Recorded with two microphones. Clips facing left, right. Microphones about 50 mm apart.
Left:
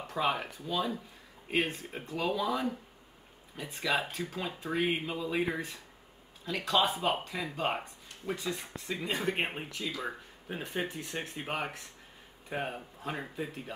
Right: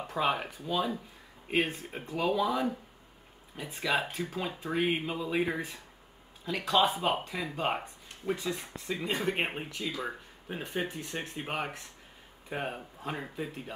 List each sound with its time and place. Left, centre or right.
0.0 s speech: centre